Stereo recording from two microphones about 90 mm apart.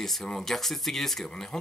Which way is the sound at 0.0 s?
5° left (ahead or behind).